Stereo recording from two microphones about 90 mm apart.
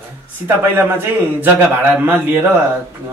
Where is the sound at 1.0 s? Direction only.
20° right (ahead or behind).